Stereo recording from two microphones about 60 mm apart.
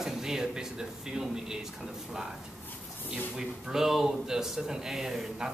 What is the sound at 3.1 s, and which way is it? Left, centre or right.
Speech, centre.